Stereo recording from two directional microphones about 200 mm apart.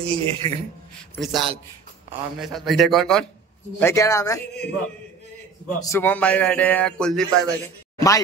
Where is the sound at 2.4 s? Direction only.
Centre (ahead or behind).